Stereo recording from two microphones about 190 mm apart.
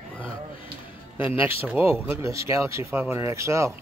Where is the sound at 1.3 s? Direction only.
30° left (ahead or behind).